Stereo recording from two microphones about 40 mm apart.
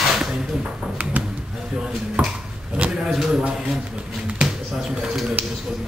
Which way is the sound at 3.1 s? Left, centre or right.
Centre.